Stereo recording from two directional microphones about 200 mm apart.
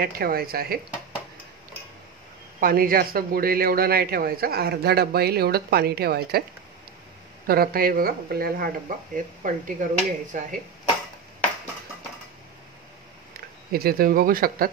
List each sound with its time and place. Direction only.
0.0 s speech: 50° right (ahead or behind)
2.6 s speech: 45° right (ahead or behind)
7.4 s speech: 50° right (ahead or behind)
13.7 s speech: 50° right (ahead or behind)